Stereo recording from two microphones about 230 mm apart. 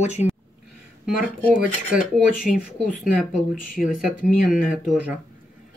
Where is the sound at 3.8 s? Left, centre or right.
Left.